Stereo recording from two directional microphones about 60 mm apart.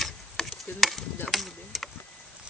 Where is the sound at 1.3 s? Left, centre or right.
Centre.